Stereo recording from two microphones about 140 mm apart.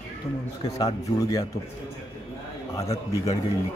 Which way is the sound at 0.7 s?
25° left (ahead or behind).